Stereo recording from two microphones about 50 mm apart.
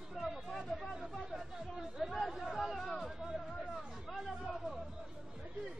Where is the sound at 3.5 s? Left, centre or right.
Centre.